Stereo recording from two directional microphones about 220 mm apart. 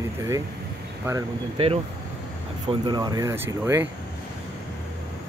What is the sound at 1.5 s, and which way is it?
Speech, 25° right (ahead or behind).